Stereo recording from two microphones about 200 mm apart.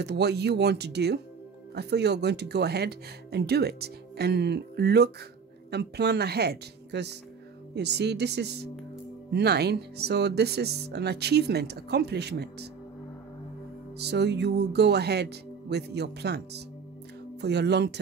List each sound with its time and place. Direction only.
0.0 s speech: 55° right (ahead or behind)
13.9 s speech: 55° right (ahead or behind)